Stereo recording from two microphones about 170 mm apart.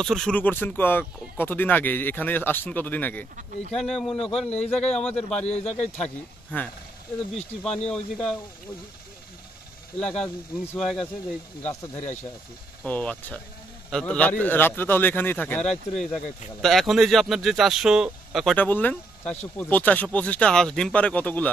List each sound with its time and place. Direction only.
0.0 s a man's voice: 5° left (ahead or behind)
5.5 s speech: 40° left (ahead or behind)
5.9 s a man's voice: 10° left (ahead or behind)
7.9 s speech: 5° left (ahead or behind)
9.9 s speech: 5° left (ahead or behind)
11.6 s a man's voice: 20° left (ahead or behind)